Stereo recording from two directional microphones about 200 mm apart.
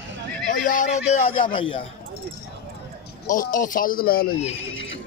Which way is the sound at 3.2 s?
40° left (ahead or behind).